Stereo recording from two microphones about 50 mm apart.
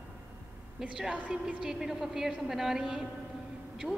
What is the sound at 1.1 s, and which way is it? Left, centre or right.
Speech, right.